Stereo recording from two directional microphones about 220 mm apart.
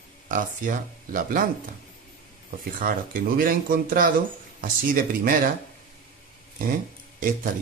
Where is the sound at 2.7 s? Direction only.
40° right (ahead or behind).